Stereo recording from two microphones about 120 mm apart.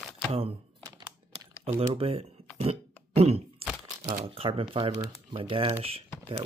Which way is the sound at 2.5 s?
55° right (ahead or behind).